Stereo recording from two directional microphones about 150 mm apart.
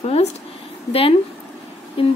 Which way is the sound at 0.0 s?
45° left (ahead or behind).